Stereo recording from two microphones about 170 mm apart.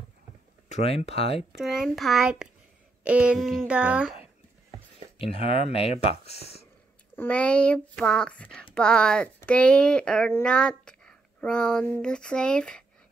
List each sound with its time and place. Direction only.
0.7 s speech: 40° left (ahead or behind)
1.6 s speech: centre (ahead or behind)
5.2 s speech: 35° left (ahead or behind)
7.2 s speech: 5° left (ahead or behind)